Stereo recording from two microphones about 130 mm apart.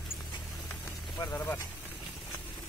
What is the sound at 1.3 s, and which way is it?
Speech, 15° left (ahead or behind).